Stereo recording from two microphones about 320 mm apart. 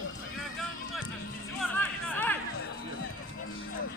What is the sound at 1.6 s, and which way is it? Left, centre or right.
Music, centre.